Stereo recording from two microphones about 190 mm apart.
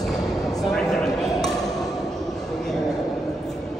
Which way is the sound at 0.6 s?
Centre (ahead or behind).